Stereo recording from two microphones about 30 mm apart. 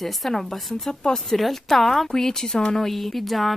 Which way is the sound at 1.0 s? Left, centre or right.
Centre.